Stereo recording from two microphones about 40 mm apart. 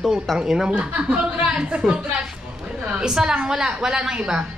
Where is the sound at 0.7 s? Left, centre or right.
Right.